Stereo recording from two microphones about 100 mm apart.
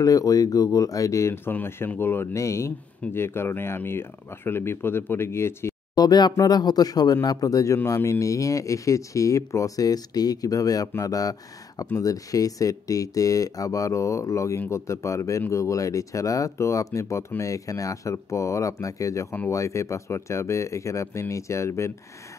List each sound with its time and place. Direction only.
0.0 s speech: 35° left (ahead or behind)
5.9 s speech: 45° left (ahead or behind)